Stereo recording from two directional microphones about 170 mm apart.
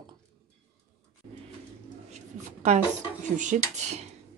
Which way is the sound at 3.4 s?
45° right (ahead or behind).